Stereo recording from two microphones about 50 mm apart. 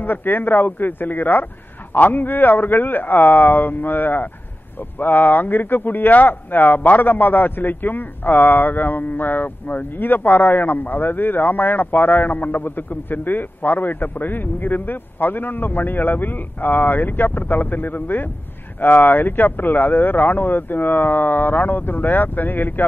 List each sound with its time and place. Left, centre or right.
0.0 s speech: left